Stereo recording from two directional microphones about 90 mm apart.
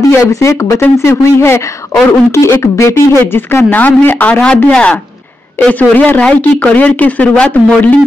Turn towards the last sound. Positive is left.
turn(degrees=15)  # may be behind; listen again after turning